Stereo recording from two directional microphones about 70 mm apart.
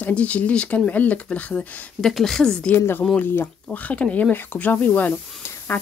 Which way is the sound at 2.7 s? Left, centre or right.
Left.